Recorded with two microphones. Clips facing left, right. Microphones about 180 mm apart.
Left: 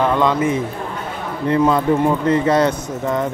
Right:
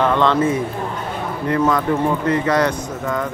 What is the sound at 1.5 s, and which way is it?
Speech, 25° left (ahead or behind).